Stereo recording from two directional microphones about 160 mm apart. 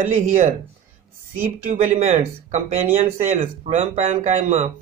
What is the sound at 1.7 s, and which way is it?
A man's voice, 45° right (ahead or behind).